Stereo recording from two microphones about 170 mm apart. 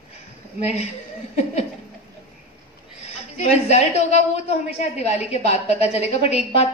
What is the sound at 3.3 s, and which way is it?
A woman's voice, 40° left (ahead or behind).